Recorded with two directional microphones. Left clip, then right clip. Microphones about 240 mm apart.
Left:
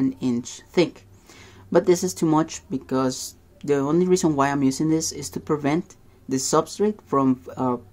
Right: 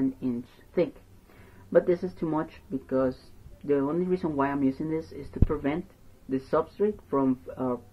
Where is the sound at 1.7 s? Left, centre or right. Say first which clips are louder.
Left 4 dB; left.